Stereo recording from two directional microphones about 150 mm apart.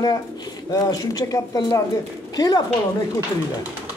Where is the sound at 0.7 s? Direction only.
25° left (ahead or behind).